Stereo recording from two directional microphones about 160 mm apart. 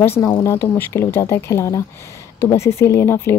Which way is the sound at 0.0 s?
15° left (ahead or behind).